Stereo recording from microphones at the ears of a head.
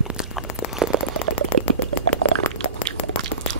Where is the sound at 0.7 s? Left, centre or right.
Right.